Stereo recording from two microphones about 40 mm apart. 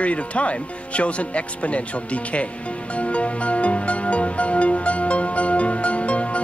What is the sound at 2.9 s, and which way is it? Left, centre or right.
Music, left.